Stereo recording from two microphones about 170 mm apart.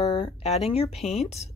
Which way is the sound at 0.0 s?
30° left (ahead or behind).